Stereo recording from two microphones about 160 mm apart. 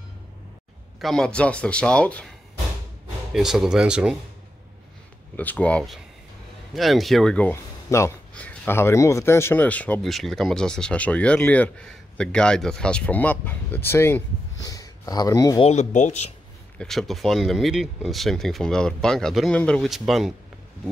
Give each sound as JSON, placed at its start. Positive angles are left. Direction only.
{"t": 1.0, "sound": "speech", "side_deg": 5}
{"t": 3.3, "sound": "speech", "side_deg": 0}
{"t": 5.3, "sound": "speech", "side_deg": 10}
{"t": 15.6, "sound": "speech", "side_deg": 45}
{"t": 16.7, "sound": "speech", "side_deg": 0}